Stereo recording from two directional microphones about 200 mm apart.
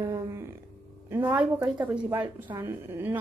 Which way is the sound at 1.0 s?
10° right (ahead or behind).